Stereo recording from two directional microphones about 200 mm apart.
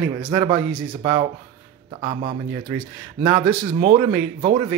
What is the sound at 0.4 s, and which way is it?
Speech, 25° right (ahead or behind).